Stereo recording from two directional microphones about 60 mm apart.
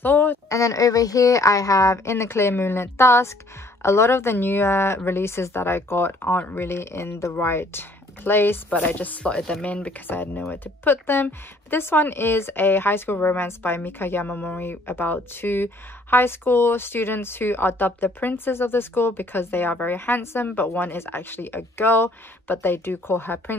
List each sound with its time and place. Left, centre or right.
0.0 s a sound: left
0.5 s speech: left
6.2 s speech: left
7.3 s speech: left
8.6 s a woman's voice: left
10.0 s speech: left